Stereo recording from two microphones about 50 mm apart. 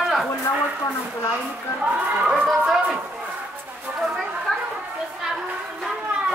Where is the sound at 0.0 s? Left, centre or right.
Centre.